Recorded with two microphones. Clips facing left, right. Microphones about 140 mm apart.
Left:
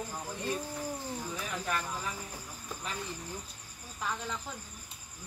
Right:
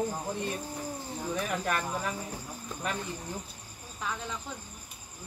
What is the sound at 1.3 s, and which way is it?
Speech, 60° right (ahead or behind).